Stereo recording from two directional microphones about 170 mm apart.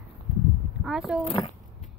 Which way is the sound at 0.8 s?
5° right (ahead or behind).